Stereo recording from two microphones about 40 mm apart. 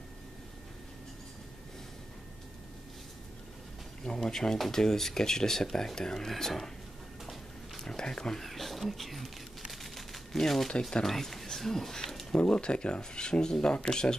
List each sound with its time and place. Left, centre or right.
4.0 s speech: centre
7.8 s a sound: centre
8.5 s speech: centre
9.7 s crumpling: centre
10.8 s speech: centre
12.4 s speech: left